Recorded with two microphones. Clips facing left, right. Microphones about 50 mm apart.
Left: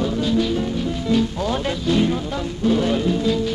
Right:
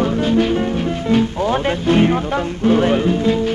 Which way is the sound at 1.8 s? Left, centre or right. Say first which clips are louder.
Right 5 dB; right.